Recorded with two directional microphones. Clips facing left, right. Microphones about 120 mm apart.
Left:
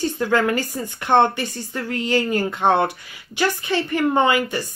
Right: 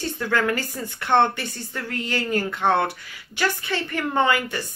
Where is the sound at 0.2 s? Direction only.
20° left (ahead or behind).